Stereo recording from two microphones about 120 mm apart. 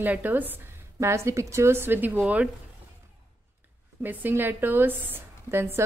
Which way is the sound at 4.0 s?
15° right (ahead or behind).